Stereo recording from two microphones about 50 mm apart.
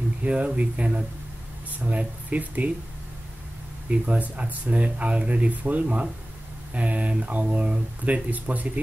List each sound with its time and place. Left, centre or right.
0.2 s speech: right
4.0 s speech: right